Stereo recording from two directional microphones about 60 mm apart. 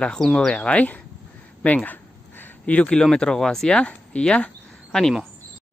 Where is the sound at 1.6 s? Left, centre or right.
Left.